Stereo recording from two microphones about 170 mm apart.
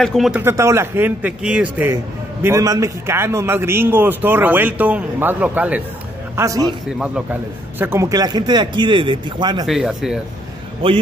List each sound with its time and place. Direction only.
0.0 s speech: centre (ahead or behind)
0.4 s a man's voice: 15° right (ahead or behind)
6.3 s speech: 20° right (ahead or behind)
7.8 s speech: 15° right (ahead or behind)
9.7 s speech: 5° right (ahead or behind)